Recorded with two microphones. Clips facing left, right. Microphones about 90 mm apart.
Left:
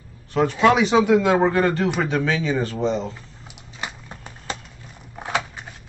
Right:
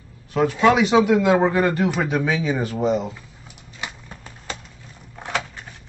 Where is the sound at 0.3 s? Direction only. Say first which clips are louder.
Even; centre (ahead or behind).